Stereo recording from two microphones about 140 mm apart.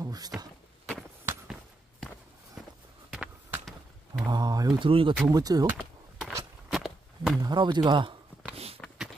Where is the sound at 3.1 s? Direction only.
5° right (ahead or behind).